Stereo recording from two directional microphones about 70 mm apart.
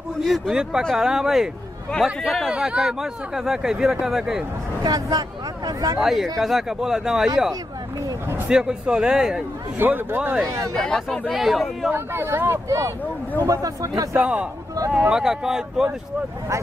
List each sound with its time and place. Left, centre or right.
0.2 s speech: centre
2.5 s speech: centre
4.8 s speech: right
5.9 s speech: centre
8.5 s speech: centre
9.8 s speech: right
10.8 s speech: centre
11.9 s speech: right
13.5 s speech: right
14.1 s speech: centre